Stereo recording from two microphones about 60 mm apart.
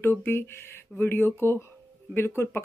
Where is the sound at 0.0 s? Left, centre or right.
Left.